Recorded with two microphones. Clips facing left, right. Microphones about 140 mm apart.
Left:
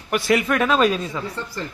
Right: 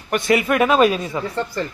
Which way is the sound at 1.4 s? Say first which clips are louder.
Right 7 dB; 70° right (ahead or behind).